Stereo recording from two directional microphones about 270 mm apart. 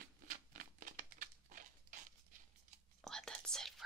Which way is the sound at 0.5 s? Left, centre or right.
Right.